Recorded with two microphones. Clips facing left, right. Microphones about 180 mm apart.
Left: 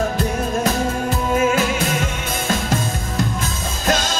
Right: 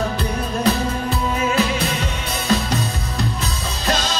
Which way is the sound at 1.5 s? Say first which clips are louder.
Left 1 dB; 45° left (ahead or behind).